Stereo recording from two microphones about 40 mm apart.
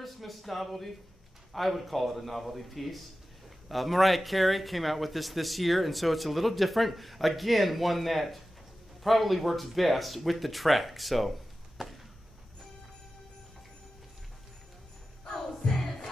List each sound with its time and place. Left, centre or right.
0.0 s a man's voice: centre
11.8 s a sound: centre
15.7 s crowd: centre